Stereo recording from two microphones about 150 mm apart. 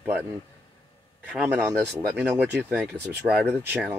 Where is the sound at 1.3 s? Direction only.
5° right (ahead or behind).